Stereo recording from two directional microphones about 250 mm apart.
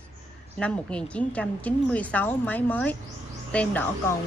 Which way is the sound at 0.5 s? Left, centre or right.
Centre.